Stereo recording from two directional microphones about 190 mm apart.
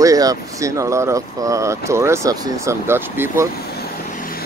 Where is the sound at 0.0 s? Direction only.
20° right (ahead or behind).